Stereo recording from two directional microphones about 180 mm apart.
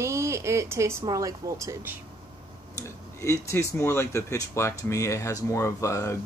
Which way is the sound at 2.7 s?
15° left (ahead or behind).